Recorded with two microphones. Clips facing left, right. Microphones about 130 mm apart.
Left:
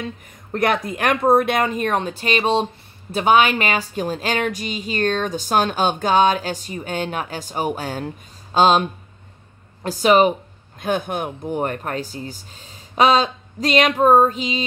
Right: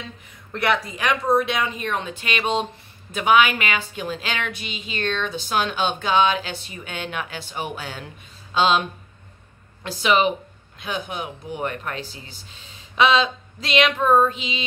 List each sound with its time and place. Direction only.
0.0 s a woman's voice: 45° left (ahead or behind)
9.8 s speech: 40° left (ahead or behind)